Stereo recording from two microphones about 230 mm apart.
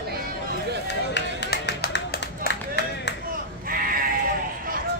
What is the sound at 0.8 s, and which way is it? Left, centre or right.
Music, left.